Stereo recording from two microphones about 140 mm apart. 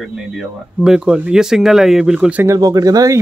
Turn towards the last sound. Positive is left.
turn(degrees=-25)  # may be behind; listen again after turning